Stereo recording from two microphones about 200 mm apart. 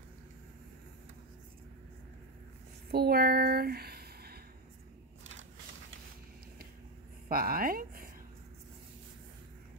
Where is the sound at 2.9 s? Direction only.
50° right (ahead or behind).